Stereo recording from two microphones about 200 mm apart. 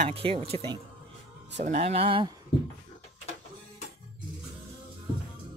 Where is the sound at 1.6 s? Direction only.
30° right (ahead or behind).